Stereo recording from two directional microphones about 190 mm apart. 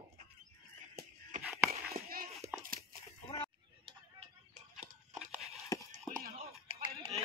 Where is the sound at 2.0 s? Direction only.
50° right (ahead or behind).